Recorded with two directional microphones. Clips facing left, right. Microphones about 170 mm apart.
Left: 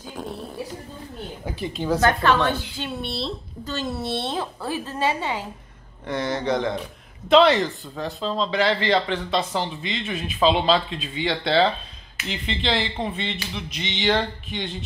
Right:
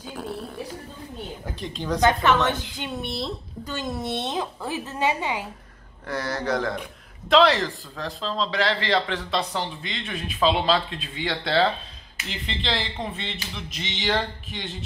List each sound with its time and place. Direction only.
0.0 s music: 15° left (ahead or behind)
1.4 s speech: 5° left (ahead or behind)
2.0 s a woman's voice: 20° right (ahead or behind)
6.0 s speech: centre (ahead or behind)